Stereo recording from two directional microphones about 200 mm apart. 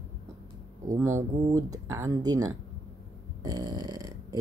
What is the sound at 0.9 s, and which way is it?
Speech, 15° right (ahead or behind).